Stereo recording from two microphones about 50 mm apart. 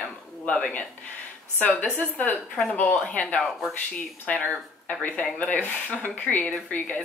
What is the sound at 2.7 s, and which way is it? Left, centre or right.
Speech, left.